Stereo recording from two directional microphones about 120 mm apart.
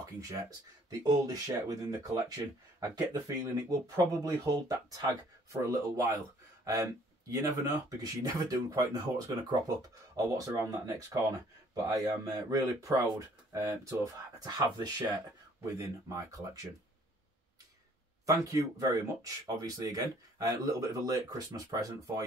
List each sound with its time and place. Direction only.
0.0 s speech: 30° right (ahead or behind)
18.2 s speech: 25° right (ahead or behind)